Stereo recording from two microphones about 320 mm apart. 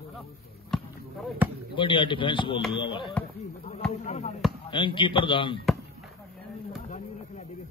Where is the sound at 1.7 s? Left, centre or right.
Centre.